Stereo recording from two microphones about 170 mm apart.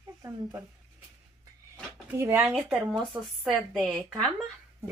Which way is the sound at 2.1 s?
15° right (ahead or behind).